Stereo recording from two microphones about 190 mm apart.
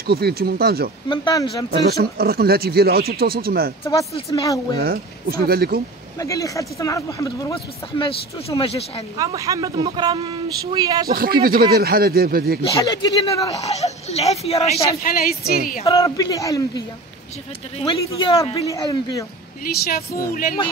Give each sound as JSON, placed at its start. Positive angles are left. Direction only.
{"t": 0.0, "sound": "speech", "side_deg": -55}
{"t": 1.0, "sound": "speech", "side_deg": 25}
{"t": 1.7, "sound": "speech", "side_deg": -55}
{"t": 4.3, "sound": "speech", "side_deg": 20}
{"t": 4.7, "sound": "speech", "side_deg": -55}
{"t": 6.1, "sound": "speech", "side_deg": 15}
{"t": 8.0, "sound": "speech", "side_deg": 30}
{"t": 9.2, "sound": "speech", "side_deg": -15}
{"t": 11.1, "sound": "speech", "side_deg": -50}
{"t": 12.8, "sound": "speech", "side_deg": 20}
{"t": 15.0, "sound": "speech", "side_deg": 50}
{"t": 16.0, "sound": "speech", "side_deg": 15}
{"t": 17.8, "sound": "speech", "side_deg": 20}
{"t": 19.6, "sound": "speech", "side_deg": 55}